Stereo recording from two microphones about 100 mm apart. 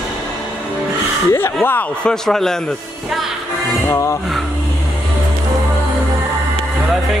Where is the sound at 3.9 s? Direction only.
30° left (ahead or behind).